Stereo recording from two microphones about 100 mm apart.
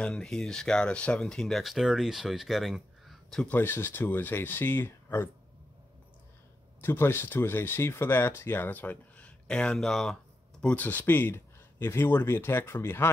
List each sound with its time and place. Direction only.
0.0 s speech: 5° left (ahead or behind)
3.4 s speech: 20° left (ahead or behind)
6.8 s speech: 25° left (ahead or behind)